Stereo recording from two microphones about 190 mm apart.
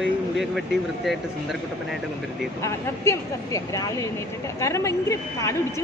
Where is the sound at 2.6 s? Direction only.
15° left (ahead or behind).